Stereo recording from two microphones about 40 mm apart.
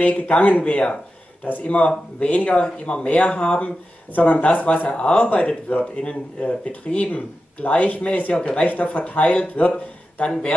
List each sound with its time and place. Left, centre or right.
0.0 s speech: left
3.5 s speech: left
8.9 s speech: left
9.2 s speech: left
10.2 s speech: left